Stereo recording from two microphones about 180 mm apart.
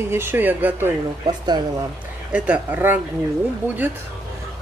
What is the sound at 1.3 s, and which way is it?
Speech, 25° right (ahead or behind).